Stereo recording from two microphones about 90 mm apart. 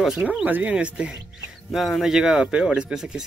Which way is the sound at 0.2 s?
15° right (ahead or behind).